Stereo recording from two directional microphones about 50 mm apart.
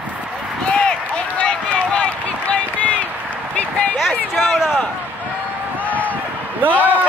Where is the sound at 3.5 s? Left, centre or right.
Left.